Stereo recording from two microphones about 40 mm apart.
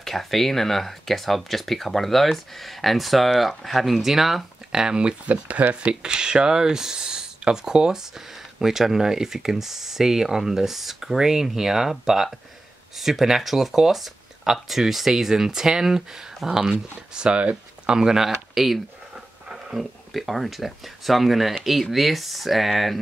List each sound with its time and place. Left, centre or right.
0.0 s speech: centre
4.7 s speech: right
5.2 s speech: right
17.8 s a sound: centre
19.8 s speech: centre